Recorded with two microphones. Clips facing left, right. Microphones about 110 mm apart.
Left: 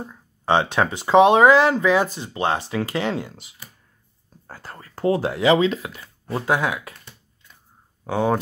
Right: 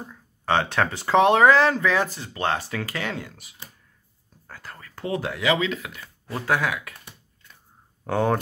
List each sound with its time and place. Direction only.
0.1 s speech: 20° left (ahead or behind)
8.0 s speech: centre (ahead or behind)